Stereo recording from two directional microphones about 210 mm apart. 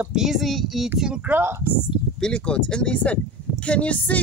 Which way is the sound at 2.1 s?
5° left (ahead or behind).